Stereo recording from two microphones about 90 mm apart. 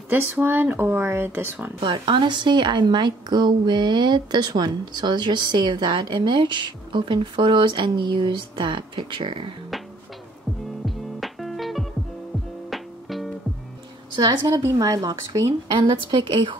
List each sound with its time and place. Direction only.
0.1 s speech: 20° right (ahead or behind)
1.8 s speech: 65° right (ahead or behind)
10.9 s music: centre (ahead or behind)
14.5 s speech: 35° right (ahead or behind)
15.7 s a woman's voice: 65° right (ahead or behind)